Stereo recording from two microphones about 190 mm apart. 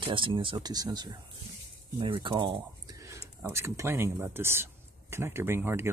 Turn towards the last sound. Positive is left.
turn(degrees=-15)  # may be behind; listen again after turning